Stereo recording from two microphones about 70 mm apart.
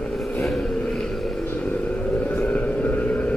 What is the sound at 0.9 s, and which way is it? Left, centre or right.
Vehicle, centre.